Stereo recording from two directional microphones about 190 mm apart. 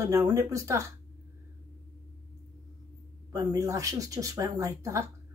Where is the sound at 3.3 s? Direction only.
15° right (ahead or behind).